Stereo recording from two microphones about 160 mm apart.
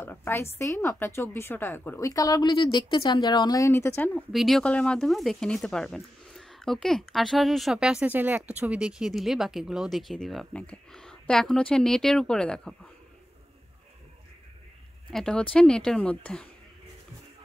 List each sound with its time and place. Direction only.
0.0 s a woman's voice: 15° left (ahead or behind)
4.3 s speech: centre (ahead or behind)
15.0 s speech: 5° left (ahead or behind)